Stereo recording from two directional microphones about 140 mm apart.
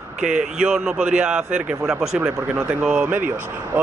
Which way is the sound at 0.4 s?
5° right (ahead or behind).